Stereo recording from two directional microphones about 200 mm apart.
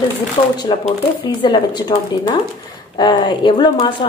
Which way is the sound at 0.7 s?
25° left (ahead or behind).